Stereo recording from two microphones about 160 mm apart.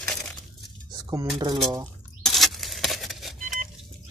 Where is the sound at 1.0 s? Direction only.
20° right (ahead or behind).